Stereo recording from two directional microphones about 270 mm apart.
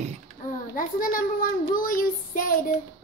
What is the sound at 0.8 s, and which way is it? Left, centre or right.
Child singing, left.